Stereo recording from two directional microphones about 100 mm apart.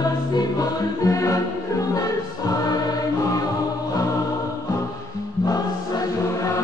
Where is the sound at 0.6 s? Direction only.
40° left (ahead or behind).